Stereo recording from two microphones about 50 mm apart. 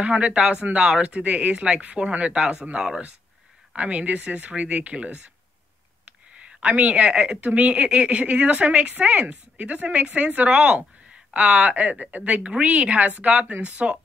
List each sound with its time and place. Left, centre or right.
0.0 s a woman's voice: right
2.3 s speech: centre
3.7 s a woman's voice: right
6.3 s a sound: right
7.0 s speech: centre
7.3 s a woman's voice: right